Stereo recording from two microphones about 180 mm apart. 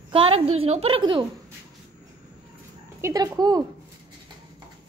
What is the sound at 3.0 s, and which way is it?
Speech, 20° right (ahead or behind).